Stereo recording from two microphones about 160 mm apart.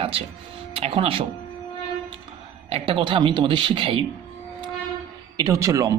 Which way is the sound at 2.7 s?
35° right (ahead or behind).